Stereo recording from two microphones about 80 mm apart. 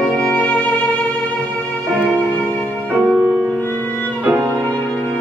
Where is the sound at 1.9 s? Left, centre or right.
Centre.